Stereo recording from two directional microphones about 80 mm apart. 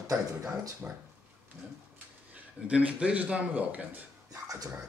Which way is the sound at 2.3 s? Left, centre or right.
Centre.